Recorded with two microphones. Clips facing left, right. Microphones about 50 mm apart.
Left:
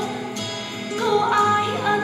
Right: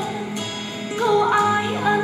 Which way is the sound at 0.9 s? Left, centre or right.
Right.